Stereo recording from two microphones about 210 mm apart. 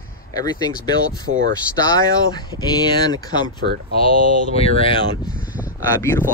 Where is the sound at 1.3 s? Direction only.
65° right (ahead or behind).